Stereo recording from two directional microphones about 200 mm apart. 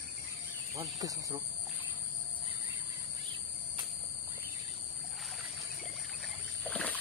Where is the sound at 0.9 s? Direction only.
20° right (ahead or behind).